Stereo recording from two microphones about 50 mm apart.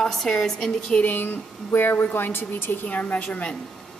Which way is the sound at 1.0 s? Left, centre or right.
Left.